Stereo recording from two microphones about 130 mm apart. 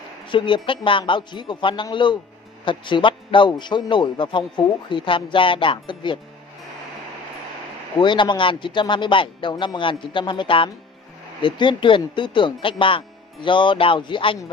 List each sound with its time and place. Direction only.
0.3 s a man's voice: 40° left (ahead or behind)
8.0 s a man's voice: 35° left (ahead or behind)